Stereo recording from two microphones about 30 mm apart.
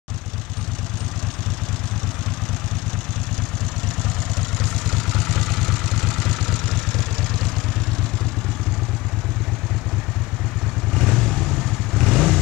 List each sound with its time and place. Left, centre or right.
4.6 s vehicle: centre
6.4 s vehicle: left
11.0 s vehicle: centre
11.9 s vehicle: centre